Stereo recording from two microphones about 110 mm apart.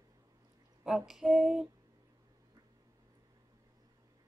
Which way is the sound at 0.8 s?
5° right (ahead or behind).